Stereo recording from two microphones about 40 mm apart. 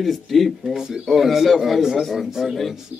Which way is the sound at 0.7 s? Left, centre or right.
Centre.